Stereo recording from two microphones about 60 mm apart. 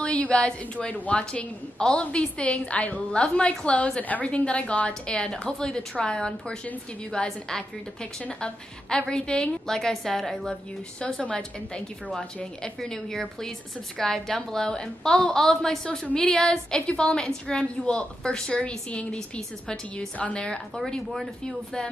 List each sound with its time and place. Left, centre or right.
0.0 s a woman's voice: centre
21.1 s speech: centre